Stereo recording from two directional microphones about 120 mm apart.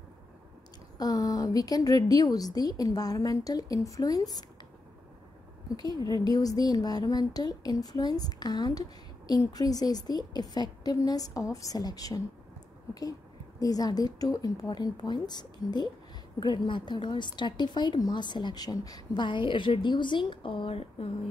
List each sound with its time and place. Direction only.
0.9 s a woman's voice: 35° left (ahead or behind)
5.8 s a woman's voice: 35° left (ahead or behind)
13.6 s a woman's voice: 30° left (ahead or behind); by 21.1 s 50° left (ahead or behind)